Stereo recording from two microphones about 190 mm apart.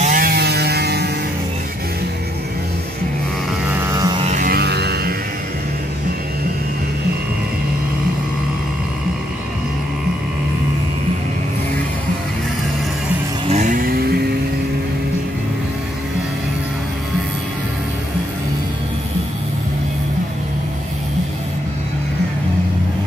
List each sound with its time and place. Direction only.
0.0 s mains hum: 45° right (ahead or behind)
3.9 s music: 20° right (ahead or behind)
4.2 s music: 40° right (ahead or behind); by 5.1 s 55° right (ahead or behind)
13.5 s vehicle: 40° right (ahead or behind)